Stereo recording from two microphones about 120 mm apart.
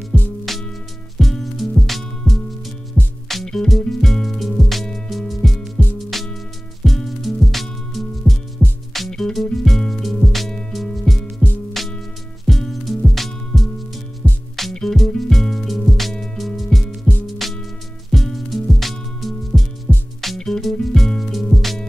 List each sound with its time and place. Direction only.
0.1 s music: 10° left (ahead or behind)